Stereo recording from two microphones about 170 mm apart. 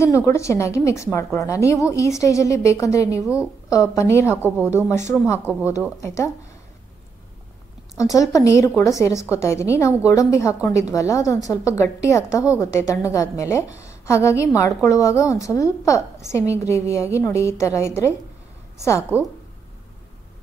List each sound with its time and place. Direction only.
0.0 s a woman's voice: 15° left (ahead or behind)
4.4 s a woman's voice: 10° right (ahead or behind)
4.6 s a woman's voice: 15° left (ahead or behind)
8.0 s a woman's voice: 20° left (ahead or behind)